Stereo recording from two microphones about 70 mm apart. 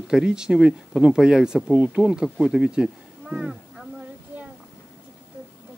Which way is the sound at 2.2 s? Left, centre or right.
Centre.